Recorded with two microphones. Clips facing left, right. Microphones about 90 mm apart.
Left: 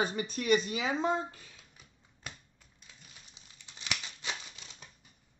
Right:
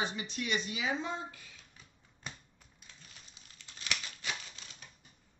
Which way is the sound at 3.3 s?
20° left (ahead or behind).